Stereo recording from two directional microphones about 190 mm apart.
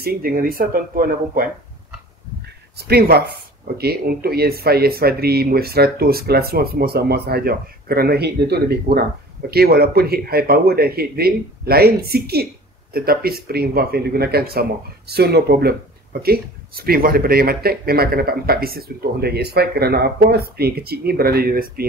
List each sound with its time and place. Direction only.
0.0 s speech: 50° right (ahead or behind)
2.8 s speech: 55° right (ahead or behind)